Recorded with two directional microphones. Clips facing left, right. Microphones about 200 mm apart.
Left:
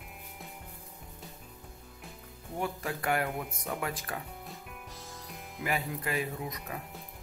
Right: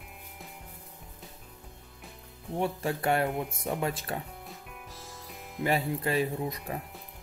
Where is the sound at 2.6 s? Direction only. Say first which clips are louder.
Right 4 dB; 30° right (ahead or behind).